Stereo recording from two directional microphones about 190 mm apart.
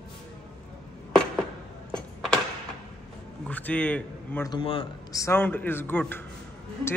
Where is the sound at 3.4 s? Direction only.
10° left (ahead or behind).